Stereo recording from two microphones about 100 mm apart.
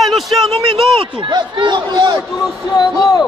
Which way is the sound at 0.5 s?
55° right (ahead or behind).